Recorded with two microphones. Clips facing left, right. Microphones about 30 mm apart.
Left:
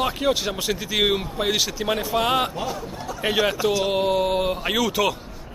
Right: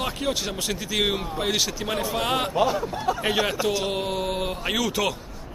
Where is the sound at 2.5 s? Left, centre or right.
Right.